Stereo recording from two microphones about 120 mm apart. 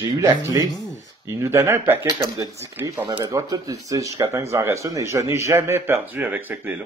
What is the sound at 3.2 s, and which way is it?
Speech, 30° right (ahead or behind).